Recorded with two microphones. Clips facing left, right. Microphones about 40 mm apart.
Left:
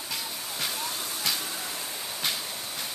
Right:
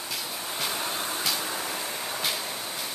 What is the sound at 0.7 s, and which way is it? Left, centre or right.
Vehicle, right.